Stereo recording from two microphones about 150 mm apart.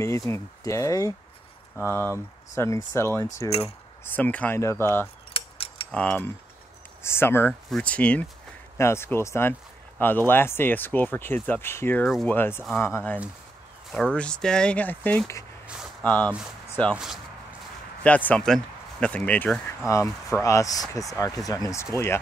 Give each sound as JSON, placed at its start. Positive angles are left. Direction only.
{"t": 0.3, "sound": "speech", "side_deg": 20}
{"t": 5.3, "sound": "keys jangling", "side_deg": 40}
{"t": 5.9, "sound": "speech", "side_deg": 10}
{"t": 15.6, "sound": "a sound", "side_deg": -5}
{"t": 16.0, "sound": "speech", "side_deg": 10}
{"t": 16.9, "sound": "speech", "side_deg": -5}
{"t": 18.0, "sound": "speech", "side_deg": 10}